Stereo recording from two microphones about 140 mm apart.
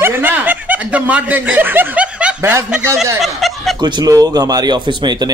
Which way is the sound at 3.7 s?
30° right (ahead or behind).